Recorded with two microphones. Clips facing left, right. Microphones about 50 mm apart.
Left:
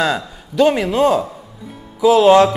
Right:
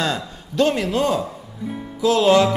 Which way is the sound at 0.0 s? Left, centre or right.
Centre.